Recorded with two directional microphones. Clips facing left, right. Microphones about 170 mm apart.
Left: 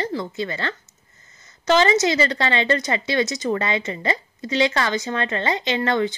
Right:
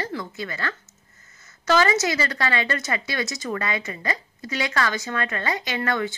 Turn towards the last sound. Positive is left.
turn(degrees=25)  # may be behind; listen again after turning